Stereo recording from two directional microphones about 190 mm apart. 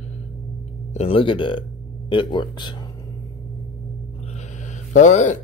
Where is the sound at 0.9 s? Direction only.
30° left (ahead or behind).